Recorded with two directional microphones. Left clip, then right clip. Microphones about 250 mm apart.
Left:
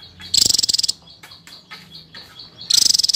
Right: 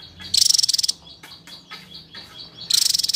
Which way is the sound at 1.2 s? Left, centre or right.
Left.